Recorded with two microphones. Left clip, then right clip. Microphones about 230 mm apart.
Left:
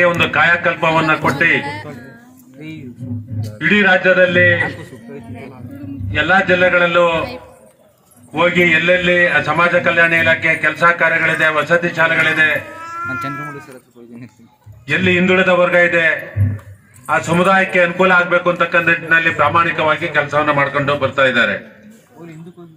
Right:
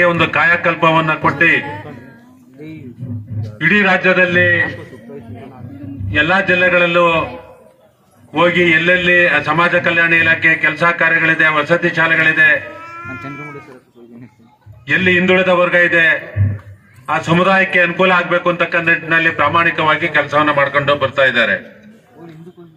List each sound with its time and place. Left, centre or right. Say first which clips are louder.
0.0 s a man's voice: even; right
3.5 s a man's voice: even; right
6.1 s a man's voice: even; right
8.3 s a man's voice: right 1 dB; right
12.8 s cat: left 5 dB; left
13.3 s speech: left 4 dB; left
14.9 s a man's voice: right 2 dB; right